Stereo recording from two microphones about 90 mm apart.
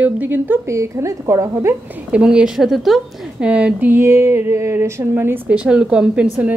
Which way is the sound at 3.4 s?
10° right (ahead or behind).